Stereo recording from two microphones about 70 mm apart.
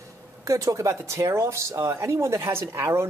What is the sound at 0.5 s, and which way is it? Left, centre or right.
Speech, right.